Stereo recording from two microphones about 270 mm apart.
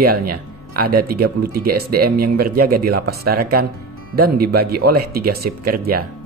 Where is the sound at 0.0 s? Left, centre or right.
Right.